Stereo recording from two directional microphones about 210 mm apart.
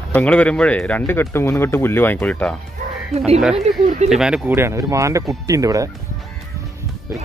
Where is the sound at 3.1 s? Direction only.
30° right (ahead or behind).